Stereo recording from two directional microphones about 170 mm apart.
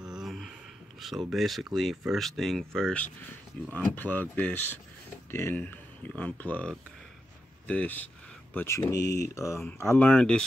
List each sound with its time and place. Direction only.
0.1 s speech: centre (ahead or behind)